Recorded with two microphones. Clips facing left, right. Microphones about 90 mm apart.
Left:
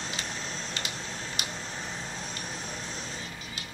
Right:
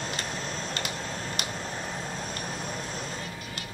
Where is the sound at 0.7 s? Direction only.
50° right (ahead or behind).